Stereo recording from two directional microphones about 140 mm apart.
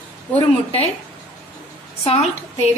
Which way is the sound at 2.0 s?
50° left (ahead or behind).